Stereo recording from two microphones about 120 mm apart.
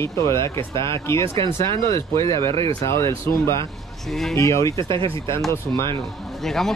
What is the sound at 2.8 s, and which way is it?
Speech, 20° left (ahead or behind).